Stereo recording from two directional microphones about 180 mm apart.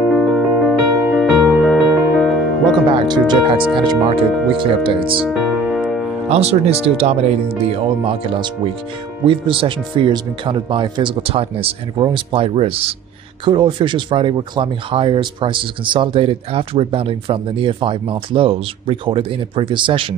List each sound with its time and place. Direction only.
0.1 s music: centre (ahead or behind)
2.9 s speech: 25° right (ahead or behind)
5.3 s music: 5° right (ahead or behind)
6.3 s speech: 35° right (ahead or behind)